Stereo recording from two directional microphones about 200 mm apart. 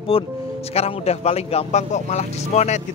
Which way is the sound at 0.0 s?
30° left (ahead or behind).